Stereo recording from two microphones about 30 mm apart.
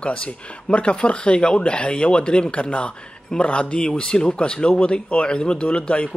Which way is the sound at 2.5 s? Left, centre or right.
Left.